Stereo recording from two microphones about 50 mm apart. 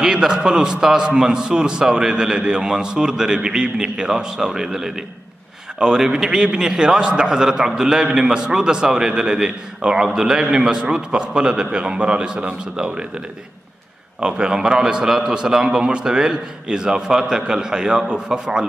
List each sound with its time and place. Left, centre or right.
0.0 s a man's voice: centre
14.2 s a man's voice: centre